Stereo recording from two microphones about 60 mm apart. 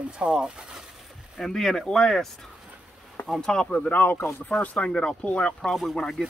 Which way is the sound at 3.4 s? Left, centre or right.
Centre.